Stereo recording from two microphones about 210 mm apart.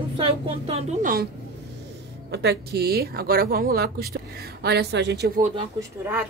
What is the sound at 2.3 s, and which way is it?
A woman's voice, 50° right (ahead or behind).